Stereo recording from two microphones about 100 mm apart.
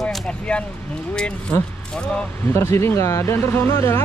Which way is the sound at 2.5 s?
25° left (ahead or behind).